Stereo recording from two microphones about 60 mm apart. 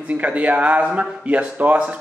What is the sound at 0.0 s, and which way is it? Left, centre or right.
Speech, right.